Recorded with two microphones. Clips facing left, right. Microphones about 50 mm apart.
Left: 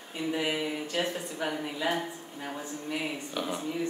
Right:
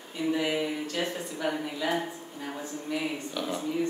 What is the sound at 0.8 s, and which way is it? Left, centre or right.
Speech, centre.